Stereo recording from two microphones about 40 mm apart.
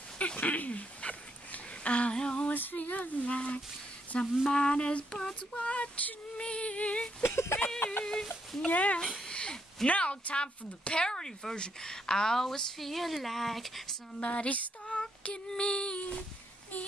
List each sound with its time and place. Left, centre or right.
0.4 s a sound: left
2.5 s a sound: left
4.1 s female singing: left
5.5 s child singing: left
6.3 s female singing: left
7.2 s speech: left
8.0 s speech: centre
8.6 s child singing: left
9.2 s a sound: left
9.8 s speech: left; by 13.9 s centre
14.2 s female singing: left